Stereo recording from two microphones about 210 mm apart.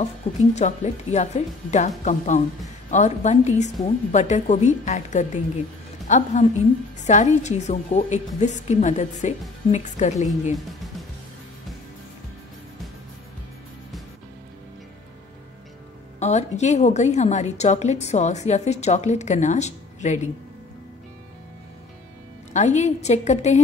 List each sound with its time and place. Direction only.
0.0 s a woman's voice: 35° left (ahead or behind)
16.2 s a woman's voice: 35° left (ahead or behind)
22.5 s a woman's voice: 35° left (ahead or behind)